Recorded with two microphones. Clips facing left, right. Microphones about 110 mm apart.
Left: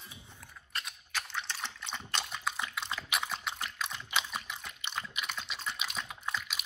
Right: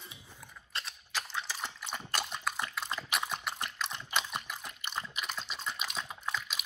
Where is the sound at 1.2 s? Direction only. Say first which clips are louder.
Right 1 dB; 5° right (ahead or behind).